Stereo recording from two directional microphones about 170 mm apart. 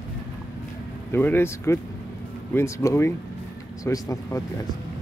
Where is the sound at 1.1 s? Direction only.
15° left (ahead or behind).